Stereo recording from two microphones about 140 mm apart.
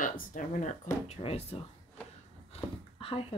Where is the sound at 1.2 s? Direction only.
45° left (ahead or behind).